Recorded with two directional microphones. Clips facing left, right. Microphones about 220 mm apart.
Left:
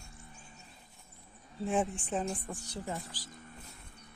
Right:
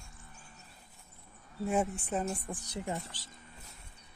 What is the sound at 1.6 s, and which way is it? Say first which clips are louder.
Speech: even; 5° right (ahead or behind).